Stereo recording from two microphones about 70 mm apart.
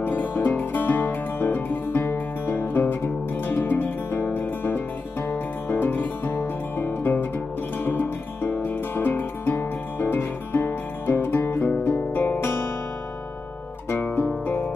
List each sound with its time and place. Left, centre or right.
0.0 s music: left
13.8 s guitar: left